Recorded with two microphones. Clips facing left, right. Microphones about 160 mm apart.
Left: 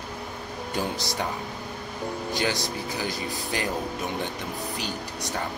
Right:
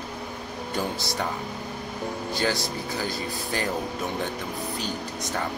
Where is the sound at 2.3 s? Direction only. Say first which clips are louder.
Right 1 dB; 20° left (ahead or behind).